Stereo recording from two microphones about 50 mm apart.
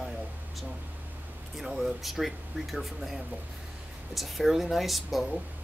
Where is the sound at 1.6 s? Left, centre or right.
Centre.